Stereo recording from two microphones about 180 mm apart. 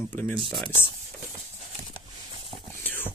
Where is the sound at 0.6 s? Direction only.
25° right (ahead or behind).